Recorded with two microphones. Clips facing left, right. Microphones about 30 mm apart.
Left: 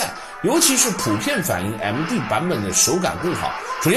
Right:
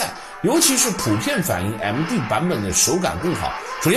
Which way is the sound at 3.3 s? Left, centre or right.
Left.